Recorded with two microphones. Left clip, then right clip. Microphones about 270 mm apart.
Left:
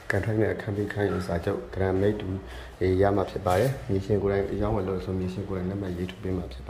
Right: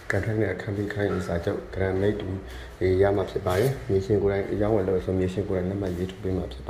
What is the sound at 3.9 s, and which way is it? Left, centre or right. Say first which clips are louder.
Speech: right 5 dB; left.